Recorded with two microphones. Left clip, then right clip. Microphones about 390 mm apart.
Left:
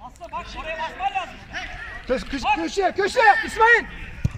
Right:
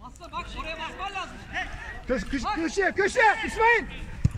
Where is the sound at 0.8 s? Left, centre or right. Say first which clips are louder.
Left 10 dB; centre.